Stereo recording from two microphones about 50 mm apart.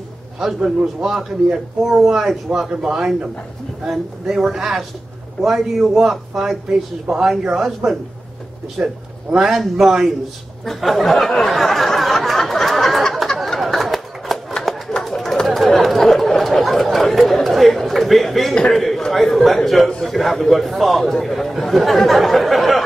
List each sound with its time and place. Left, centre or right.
0.4 s a man's voice: centre
8.8 s a man's voice: centre
9.4 s a man's voice: centre
10.6 s a sound: centre
14.6 s chatter: centre
18.7 s a sound: centre
19.9 s a man's voice: centre